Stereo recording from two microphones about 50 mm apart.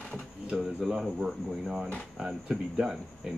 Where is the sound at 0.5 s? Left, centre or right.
Centre.